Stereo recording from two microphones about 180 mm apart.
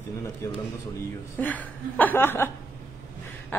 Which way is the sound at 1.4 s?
10° left (ahead or behind).